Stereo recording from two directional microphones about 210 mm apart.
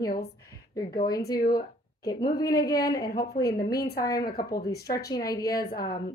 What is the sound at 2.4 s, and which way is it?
Speech, 15° left (ahead or behind).